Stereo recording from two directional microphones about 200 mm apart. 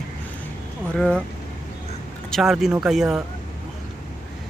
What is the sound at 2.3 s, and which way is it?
Speech, centre (ahead or behind).